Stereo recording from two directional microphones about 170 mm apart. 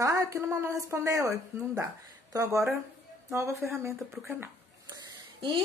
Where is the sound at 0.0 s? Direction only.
20° right (ahead or behind).